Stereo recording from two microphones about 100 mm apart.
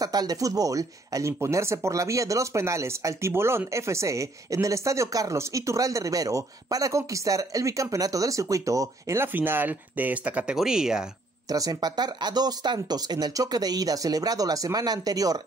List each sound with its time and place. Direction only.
0.0 s speech: 40° right (ahead or behind); by 11.1 s 5° right (ahead or behind)
11.4 s speech: 40° right (ahead or behind)